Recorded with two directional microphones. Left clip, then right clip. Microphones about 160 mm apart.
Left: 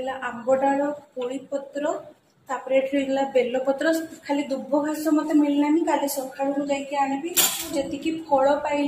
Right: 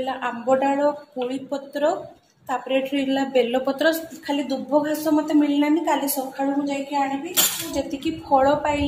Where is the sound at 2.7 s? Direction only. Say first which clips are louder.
Left 2 dB; 50° right (ahead or behind).